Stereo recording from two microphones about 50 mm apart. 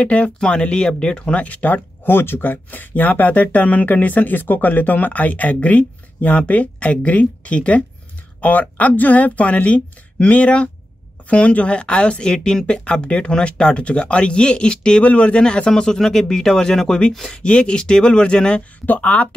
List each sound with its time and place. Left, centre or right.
0.0 s speech: left
2.0 s speech: left